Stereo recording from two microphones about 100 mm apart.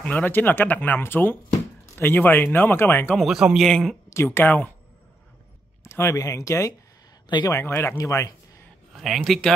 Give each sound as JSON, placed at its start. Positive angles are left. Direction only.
{"t": 0.0, "sound": "speech", "side_deg": 15}
{"t": 3.2, "sound": "speech", "side_deg": -5}
{"t": 4.1, "sound": "speech", "side_deg": 25}
{"t": 5.9, "sound": "speech", "side_deg": 25}
{"t": 7.2, "sound": "speech", "side_deg": 50}
{"t": 7.5, "sound": "speech", "side_deg": 25}
{"t": 8.9, "sound": "speech", "side_deg": -5}